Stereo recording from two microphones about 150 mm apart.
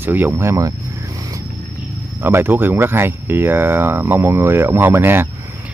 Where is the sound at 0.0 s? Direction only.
10° right (ahead or behind).